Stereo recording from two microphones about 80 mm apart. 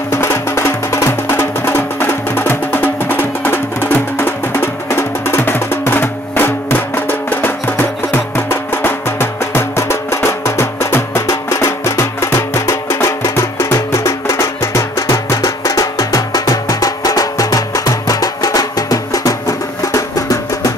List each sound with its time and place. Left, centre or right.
0.1 s music: left